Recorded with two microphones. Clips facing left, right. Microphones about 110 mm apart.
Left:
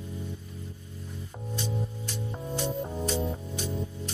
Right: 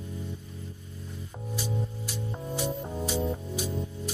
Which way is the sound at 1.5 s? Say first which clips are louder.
Even; 5° right (ahead or behind).